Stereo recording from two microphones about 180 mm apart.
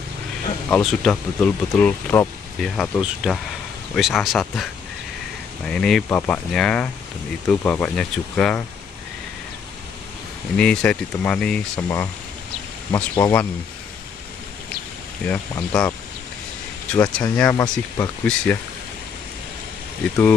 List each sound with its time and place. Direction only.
0.7 s speech: 5° left (ahead or behind)
5.7 s speech: 5° left (ahead or behind)
10.6 s speech: 5° left (ahead or behind)
12.9 s speech: 20° left (ahead or behind)
15.2 s speech: 5° left (ahead or behind)
16.9 s speech: 5° left (ahead or behind)